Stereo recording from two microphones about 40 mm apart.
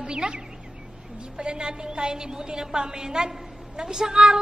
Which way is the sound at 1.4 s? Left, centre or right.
Right.